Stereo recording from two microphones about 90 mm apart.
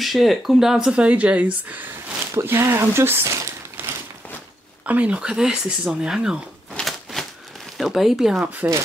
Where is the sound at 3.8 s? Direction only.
20° right (ahead or behind).